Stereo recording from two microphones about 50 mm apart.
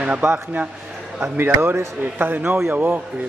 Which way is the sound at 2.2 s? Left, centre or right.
Right.